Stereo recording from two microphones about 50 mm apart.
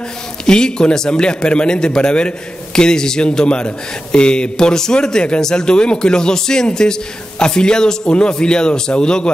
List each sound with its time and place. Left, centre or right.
0.5 s a man's voice: centre